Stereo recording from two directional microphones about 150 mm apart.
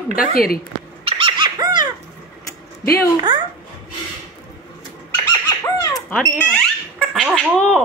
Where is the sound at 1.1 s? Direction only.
35° right (ahead or behind).